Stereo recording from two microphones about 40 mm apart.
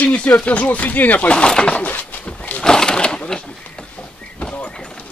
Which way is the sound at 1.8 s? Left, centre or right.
Left.